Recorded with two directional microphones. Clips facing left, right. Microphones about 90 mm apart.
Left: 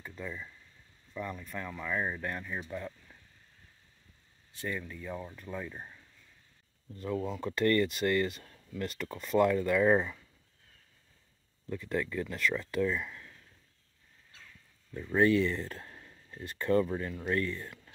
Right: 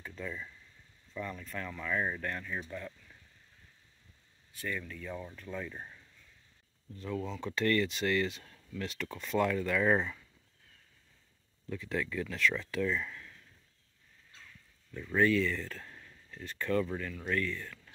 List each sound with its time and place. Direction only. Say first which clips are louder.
0.0 s a sound: even; 5° left (ahead or behind)
1.1 s speech: left 1 dB; 10° left (ahead or behind)
4.6 s speech: left 1 dB; 20° left (ahead or behind)
7.1 s speech: left 3 dB; 10° left (ahead or behind)
11.8 s speech: left 2 dB; 5° left (ahead or behind)
15.1 s speech: left 2 dB; 20° left (ahead or behind)